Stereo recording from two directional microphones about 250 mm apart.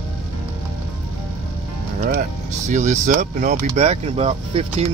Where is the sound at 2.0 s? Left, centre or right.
Right.